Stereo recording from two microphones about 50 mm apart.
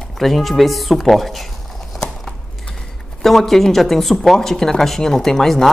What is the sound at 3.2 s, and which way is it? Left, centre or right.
Speech, centre.